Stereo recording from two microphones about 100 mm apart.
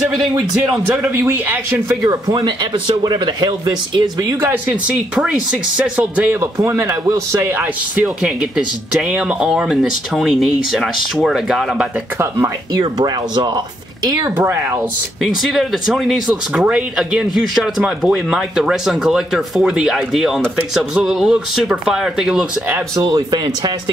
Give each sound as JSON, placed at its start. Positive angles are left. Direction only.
{"t": 0.8, "sound": "a man's voice", "side_deg": -20}
{"t": 2.0, "sound": "speech", "side_deg": -35}
{"t": 4.4, "sound": "speech", "side_deg": -20}
{"t": 6.4, "sound": "a man's voice", "side_deg": -30}
{"t": 7.5, "sound": "speech", "side_deg": -15}
{"t": 12.2, "sound": "a man's voice", "side_deg": -30}
{"t": 13.0, "sound": "a man's voice", "side_deg": -45}
{"t": 14.3, "sound": "a man's voice", "side_deg": -25}
{"t": 15.2, "sound": "speech", "side_deg": 0}
{"t": 22.9, "sound": "speech", "side_deg": -45}